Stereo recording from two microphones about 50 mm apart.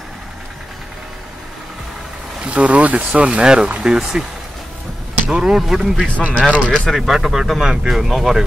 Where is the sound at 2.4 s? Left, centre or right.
Right.